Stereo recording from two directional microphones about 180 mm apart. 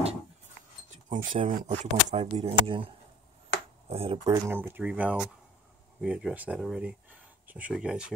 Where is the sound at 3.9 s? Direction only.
35° right (ahead or behind).